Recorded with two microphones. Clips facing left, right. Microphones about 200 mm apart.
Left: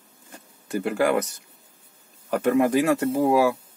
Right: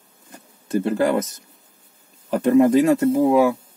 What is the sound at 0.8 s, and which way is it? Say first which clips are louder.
Speech: right 2 dB; 25° right (ahead or behind).